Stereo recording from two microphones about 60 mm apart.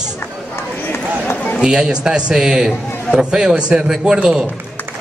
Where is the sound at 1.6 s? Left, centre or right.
Centre.